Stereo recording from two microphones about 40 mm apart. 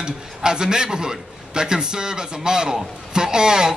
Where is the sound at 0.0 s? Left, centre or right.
Centre.